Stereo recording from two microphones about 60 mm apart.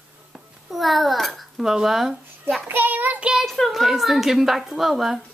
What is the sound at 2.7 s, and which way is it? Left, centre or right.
Child singing, right.